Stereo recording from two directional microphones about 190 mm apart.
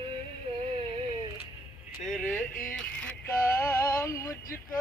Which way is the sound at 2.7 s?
10° left (ahead or behind).